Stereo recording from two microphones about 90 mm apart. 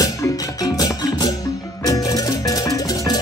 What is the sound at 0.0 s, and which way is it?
Music, 40° left (ahead or behind).